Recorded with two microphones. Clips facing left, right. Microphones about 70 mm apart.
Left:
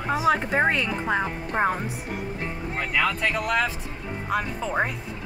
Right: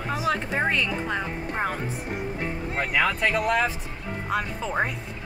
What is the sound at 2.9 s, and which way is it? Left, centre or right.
Speech, centre.